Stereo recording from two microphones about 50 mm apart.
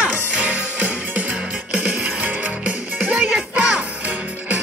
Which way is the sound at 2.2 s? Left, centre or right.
Right.